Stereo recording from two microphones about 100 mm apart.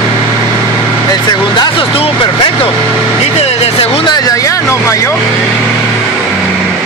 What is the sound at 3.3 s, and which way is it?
Vehicle, 90° left.